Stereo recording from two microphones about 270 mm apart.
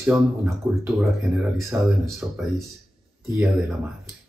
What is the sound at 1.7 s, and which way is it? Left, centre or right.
Speech, centre.